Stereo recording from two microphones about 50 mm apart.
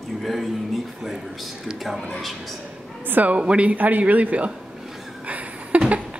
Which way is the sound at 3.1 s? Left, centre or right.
Right.